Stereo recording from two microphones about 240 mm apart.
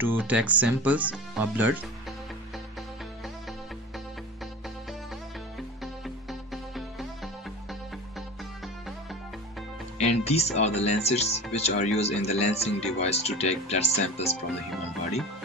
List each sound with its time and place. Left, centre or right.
0.0 s speech: centre
6.0 s music: centre
9.9 s speech: left